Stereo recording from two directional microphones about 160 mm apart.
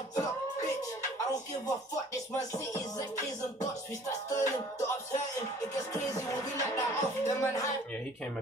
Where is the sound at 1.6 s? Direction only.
20° left (ahead or behind).